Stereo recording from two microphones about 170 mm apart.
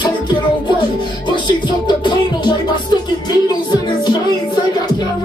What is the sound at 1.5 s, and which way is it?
Music, 25° left (ahead or behind).